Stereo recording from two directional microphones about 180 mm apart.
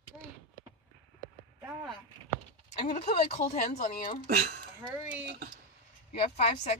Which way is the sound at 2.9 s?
35° left (ahead or behind).